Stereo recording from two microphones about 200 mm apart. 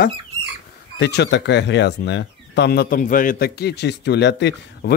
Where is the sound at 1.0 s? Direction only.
55° left (ahead or behind).